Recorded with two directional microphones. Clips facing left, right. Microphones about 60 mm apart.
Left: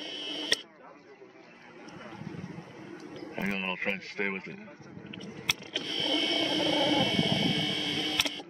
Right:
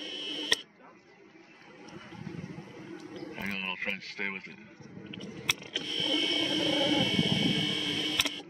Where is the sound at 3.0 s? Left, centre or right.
Centre.